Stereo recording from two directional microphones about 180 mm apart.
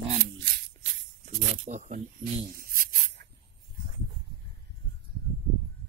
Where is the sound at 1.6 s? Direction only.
45° right (ahead or behind).